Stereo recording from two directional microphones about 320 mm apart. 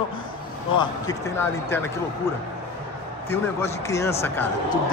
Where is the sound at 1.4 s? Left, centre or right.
Centre.